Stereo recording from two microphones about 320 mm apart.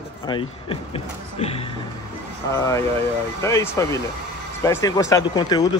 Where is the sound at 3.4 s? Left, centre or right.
Centre.